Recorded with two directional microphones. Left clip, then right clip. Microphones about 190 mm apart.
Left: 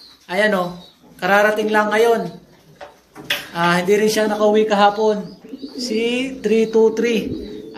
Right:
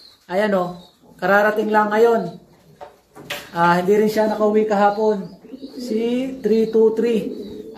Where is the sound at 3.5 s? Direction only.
30° right (ahead or behind).